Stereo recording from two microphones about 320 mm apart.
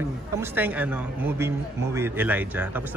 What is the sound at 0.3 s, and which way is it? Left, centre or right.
Speech, centre.